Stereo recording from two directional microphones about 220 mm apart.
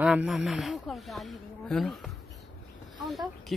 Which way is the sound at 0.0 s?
5° right (ahead or behind).